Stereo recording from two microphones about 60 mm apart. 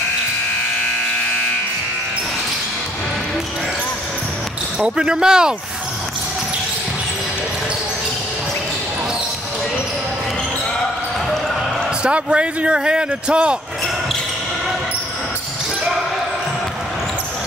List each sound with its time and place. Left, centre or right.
4.7 s speech: centre
12.0 s speech: centre